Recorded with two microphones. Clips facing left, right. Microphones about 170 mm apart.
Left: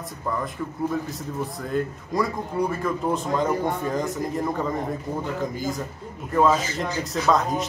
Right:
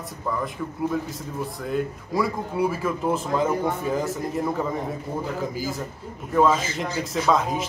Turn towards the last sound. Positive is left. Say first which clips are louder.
# even
turn(degrees=0)  # may be behind; listen again after turning